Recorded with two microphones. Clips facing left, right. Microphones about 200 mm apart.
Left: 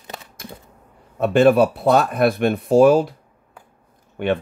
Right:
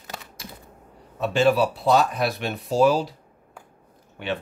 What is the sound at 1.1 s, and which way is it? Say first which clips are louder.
Speech: left 6 dB; 55° left (ahead or behind).